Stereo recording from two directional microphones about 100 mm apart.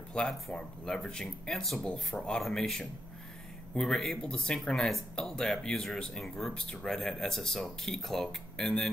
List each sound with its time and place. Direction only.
0.1 s speech: 10° left (ahead or behind)